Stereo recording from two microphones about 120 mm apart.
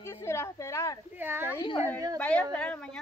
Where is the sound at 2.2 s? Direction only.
10° left (ahead or behind).